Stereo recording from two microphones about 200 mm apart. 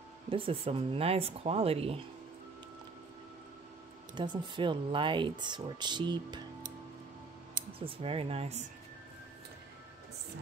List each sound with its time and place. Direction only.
0.3 s speech: 25° right (ahead or behind)
4.1 s speech: 25° right (ahead or behind)
7.8 s speech: 30° right (ahead or behind)